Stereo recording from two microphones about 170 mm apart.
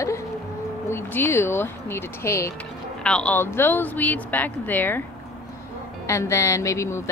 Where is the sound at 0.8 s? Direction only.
15° left (ahead or behind).